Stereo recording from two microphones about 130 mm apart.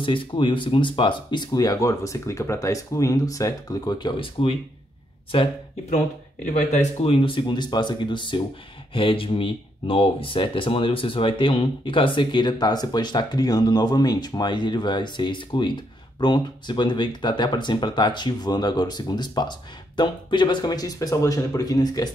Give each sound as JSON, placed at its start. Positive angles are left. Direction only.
{"t": 0.0, "sound": "speech", "side_deg": 40}
{"t": 5.9, "sound": "speech", "side_deg": 65}
{"t": 7.1, "sound": "speech", "side_deg": 45}